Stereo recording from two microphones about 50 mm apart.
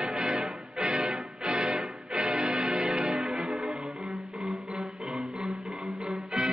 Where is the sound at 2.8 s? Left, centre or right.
Centre.